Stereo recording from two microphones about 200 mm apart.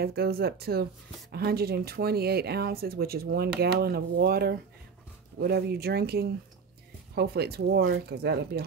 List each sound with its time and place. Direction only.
0.0 s speech: 50° right (ahead or behind)